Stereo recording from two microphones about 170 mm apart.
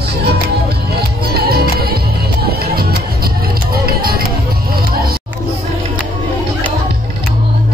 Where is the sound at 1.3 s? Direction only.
65° right (ahead or behind).